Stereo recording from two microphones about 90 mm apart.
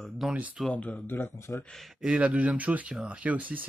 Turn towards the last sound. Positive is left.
turn(degrees=-20)  # may be behind; listen again after turning